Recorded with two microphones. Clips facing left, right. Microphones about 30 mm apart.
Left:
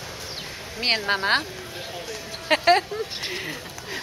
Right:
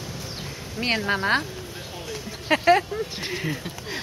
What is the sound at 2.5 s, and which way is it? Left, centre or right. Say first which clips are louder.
Speech: even; left.